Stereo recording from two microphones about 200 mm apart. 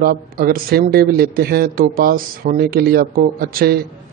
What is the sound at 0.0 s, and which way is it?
Speech, 45° right (ahead or behind).